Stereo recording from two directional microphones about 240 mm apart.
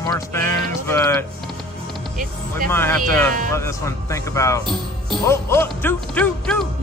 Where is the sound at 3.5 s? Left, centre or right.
Centre.